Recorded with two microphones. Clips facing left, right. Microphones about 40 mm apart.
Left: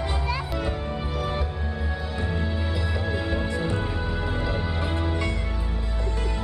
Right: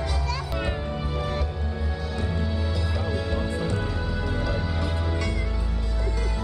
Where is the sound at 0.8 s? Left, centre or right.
Centre.